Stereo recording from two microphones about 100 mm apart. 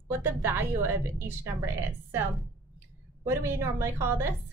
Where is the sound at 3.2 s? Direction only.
30° right (ahead or behind).